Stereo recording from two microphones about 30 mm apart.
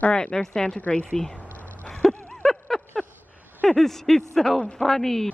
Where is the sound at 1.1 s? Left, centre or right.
Centre.